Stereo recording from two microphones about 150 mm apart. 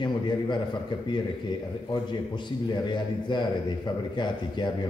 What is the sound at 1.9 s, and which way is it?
A man's voice, 30° left (ahead or behind).